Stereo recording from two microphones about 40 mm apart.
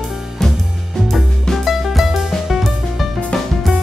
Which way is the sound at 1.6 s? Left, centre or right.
Centre.